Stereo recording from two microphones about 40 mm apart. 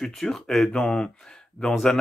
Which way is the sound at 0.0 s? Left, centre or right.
Centre.